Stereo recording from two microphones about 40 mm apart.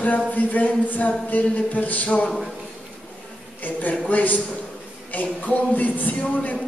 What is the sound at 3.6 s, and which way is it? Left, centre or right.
A man's voice, left.